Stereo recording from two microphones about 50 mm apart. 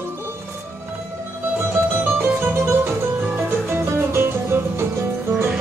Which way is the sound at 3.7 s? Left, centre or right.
Right.